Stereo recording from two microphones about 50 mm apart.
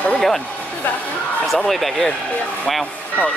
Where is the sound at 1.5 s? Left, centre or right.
Centre.